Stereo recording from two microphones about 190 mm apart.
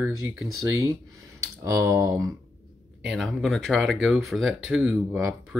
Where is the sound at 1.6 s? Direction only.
15° right (ahead or behind).